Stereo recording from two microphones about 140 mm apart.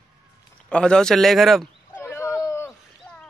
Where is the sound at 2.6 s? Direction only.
5° left (ahead or behind).